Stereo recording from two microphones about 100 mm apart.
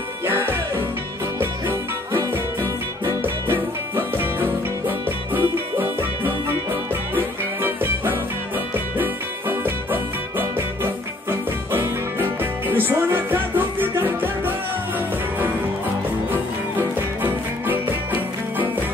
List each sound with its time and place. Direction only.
0.2 s music: 20° right (ahead or behind)
16.3 s music: 20° right (ahead or behind)